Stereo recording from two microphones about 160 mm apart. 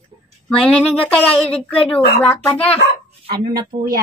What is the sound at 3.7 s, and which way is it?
Speech, 45° right (ahead or behind).